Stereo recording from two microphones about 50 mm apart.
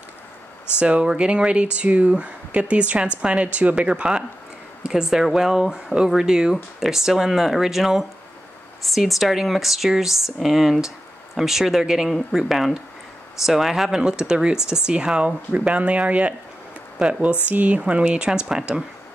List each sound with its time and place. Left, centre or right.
0.7 s speech: right
12.1 s speech: centre